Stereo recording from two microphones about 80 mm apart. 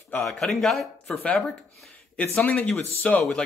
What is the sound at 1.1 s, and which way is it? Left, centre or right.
Speech, centre.